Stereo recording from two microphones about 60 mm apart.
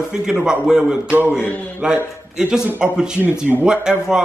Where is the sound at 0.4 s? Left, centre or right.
Centre.